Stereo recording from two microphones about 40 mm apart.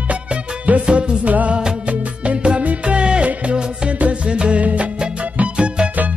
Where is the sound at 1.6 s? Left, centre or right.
Right.